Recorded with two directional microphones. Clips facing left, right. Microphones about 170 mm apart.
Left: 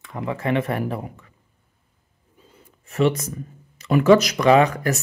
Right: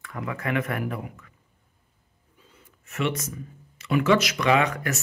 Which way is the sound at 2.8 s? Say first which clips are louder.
Left 7 dB; 35° left (ahead or behind).